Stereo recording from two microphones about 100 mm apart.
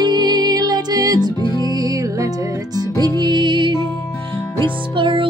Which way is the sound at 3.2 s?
50° right (ahead or behind).